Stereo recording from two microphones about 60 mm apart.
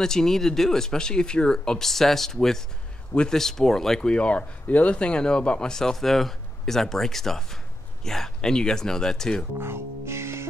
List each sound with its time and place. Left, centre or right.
0.0 s speech: centre
9.6 s music: right